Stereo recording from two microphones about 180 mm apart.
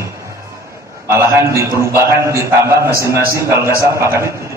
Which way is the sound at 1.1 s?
15° right (ahead or behind).